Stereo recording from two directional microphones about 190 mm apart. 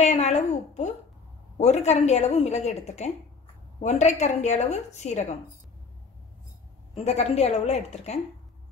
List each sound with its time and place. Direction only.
0.0 s a woman's voice: 40° left (ahead or behind)
7.2 s a woman's voice: 35° left (ahead or behind)